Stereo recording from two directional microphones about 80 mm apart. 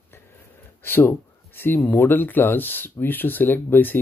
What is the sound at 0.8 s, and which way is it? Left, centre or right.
Speech, left.